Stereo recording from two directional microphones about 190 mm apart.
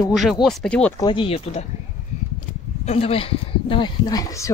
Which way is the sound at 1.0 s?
25° left (ahead or behind).